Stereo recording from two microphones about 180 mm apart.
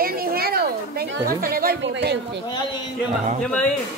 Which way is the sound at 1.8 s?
75° right (ahead or behind).